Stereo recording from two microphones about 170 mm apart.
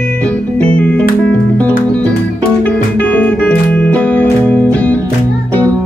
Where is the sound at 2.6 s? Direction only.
10° left (ahead or behind).